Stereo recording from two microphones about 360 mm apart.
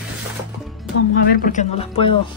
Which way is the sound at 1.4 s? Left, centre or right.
Left.